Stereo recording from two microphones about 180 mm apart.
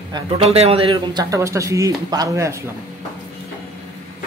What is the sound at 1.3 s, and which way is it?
Speech, 15° right (ahead or behind).